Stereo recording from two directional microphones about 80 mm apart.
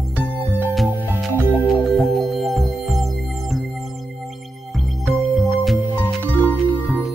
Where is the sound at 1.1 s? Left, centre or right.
Right.